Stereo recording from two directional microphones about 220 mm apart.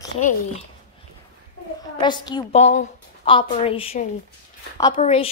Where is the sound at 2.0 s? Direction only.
20° left (ahead or behind).